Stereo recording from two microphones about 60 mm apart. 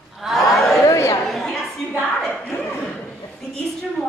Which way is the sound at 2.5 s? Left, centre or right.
Left.